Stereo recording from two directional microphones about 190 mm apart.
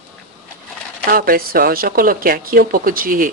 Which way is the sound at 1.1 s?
50° right (ahead or behind).